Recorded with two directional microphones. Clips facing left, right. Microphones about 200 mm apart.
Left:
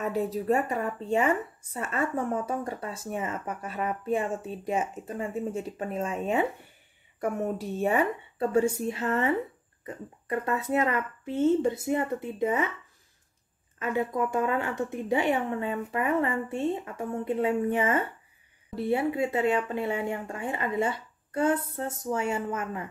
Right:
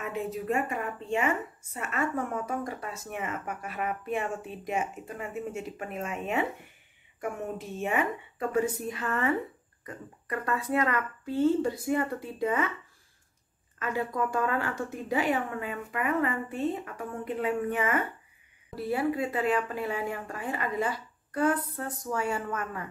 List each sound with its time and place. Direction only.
0.0 s speech: 35° left (ahead or behind)
13.7 s speech: 20° left (ahead or behind)